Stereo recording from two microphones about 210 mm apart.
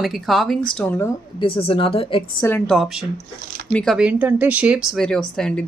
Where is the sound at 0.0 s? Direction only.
Centre (ahead or behind).